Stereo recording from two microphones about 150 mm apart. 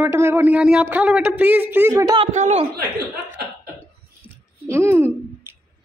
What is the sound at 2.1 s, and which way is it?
Speech, 50° right (ahead or behind).